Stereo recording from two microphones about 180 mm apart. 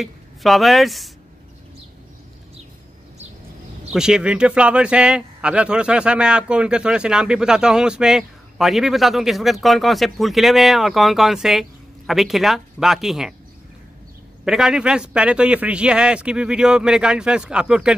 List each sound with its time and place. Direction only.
0.0 s speech: centre (ahead or behind)
3.9 s a man's voice: 5° right (ahead or behind)
14.4 s a man's voice: 5° right (ahead or behind)